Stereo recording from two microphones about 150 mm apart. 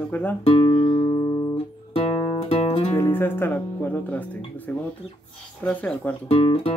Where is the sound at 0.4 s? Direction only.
35° left (ahead or behind).